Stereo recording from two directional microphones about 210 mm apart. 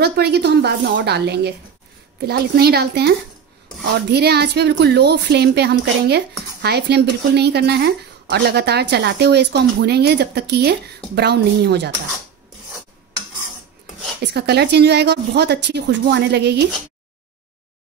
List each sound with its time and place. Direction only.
0.0 s speech: 50° right (ahead or behind)
14.2 s speech: 50° right (ahead or behind)